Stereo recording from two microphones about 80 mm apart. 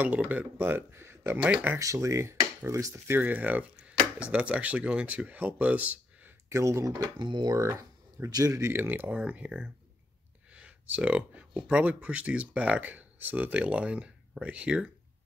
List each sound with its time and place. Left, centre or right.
0.0 s speech: centre
1.4 s speech: centre
1.8 s dishes: right
3.2 s speech: right
6.5 s dishes: right
7.2 s speech: right
7.5 s speech: right
8.3 s speech: right
8.7 s speech: right